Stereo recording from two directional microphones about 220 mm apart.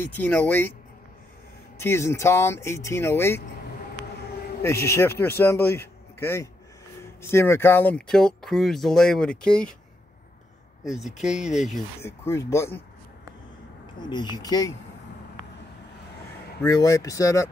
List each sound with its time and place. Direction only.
0.2 s speech: 10° left (ahead or behind)
1.8 s speech: 10° left (ahead or behind)
4.8 s speech: 10° left (ahead or behind)
10.8 s speech: centre (ahead or behind)
12.0 s speech: 10° left (ahead or behind)
14.0 s speech: 20° left (ahead or behind)
16.6 s speech: 15° left (ahead or behind)